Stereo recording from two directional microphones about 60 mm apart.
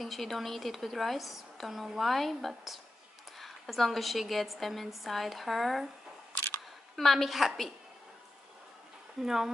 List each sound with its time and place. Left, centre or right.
0.0 s a woman's voice: centre
7.0 s a woman's voice: centre
9.2 s speech: centre